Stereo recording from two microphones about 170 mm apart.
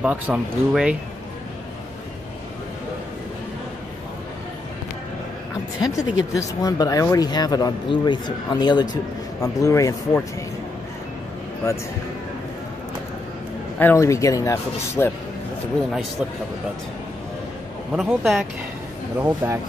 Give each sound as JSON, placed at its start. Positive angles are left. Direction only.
{"t": 0.0, "sound": "speech", "side_deg": -5}
{"t": 5.8, "sound": "speech", "side_deg": 20}
{"t": 13.7, "sound": "speech", "side_deg": 15}
{"t": 17.9, "sound": "speech", "side_deg": 0}
{"t": 19.1, "sound": "speech", "side_deg": -15}